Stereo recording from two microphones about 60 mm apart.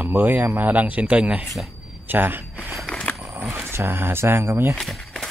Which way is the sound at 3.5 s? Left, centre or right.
Right.